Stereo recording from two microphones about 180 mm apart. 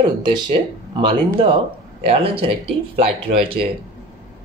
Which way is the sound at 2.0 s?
30° right (ahead or behind).